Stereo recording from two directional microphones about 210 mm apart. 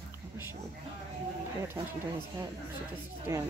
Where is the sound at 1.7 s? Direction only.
10° right (ahead or behind).